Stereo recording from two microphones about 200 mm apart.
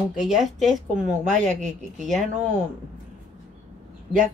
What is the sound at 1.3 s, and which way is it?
Speech, 35° right (ahead or behind).